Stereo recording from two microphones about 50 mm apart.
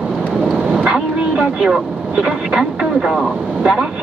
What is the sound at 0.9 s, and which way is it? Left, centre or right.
Speech, centre.